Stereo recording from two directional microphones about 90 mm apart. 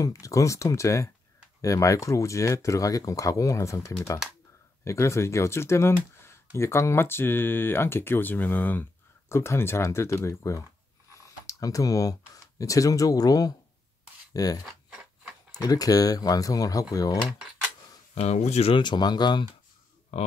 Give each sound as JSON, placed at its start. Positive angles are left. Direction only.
{"t": 0.0, "sound": "speech", "side_deg": 35}
{"t": 14.7, "sound": "a sound", "side_deg": -5}
{"t": 15.6, "sound": "speech", "side_deg": 45}
{"t": 18.6, "sound": "speech", "side_deg": 70}